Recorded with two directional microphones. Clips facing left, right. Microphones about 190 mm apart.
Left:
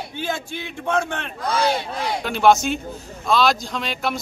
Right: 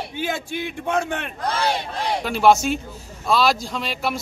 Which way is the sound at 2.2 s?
5° right (ahead or behind).